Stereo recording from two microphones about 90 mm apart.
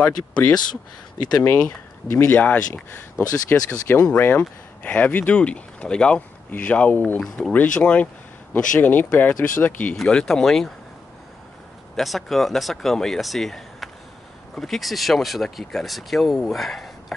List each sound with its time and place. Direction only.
1.4 s speech: 25° left (ahead or behind)
7.2 s speech: 5° left (ahead or behind)
9.9 s speech: 5° left (ahead or behind)
12.0 s speech: centre (ahead or behind)